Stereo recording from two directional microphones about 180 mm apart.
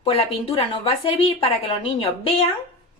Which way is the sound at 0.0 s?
30° left (ahead or behind).